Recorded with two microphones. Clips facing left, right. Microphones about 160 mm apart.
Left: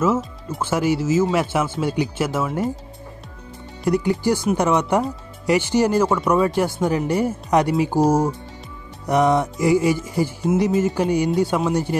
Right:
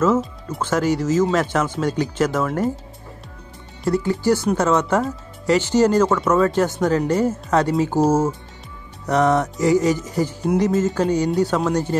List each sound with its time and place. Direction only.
0.0 s music: 10° left (ahead or behind)
3.8 s music: 15° left (ahead or behind)